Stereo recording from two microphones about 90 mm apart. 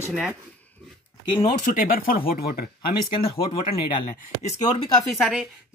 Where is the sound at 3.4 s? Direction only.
80° left.